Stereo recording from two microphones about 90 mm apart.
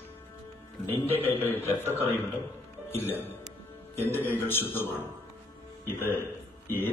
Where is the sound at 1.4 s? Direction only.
25° left (ahead or behind).